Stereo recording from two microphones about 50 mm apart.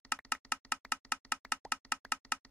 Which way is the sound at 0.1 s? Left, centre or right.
Left.